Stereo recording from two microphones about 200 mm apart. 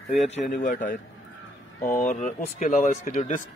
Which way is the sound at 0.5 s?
40° left (ahead or behind).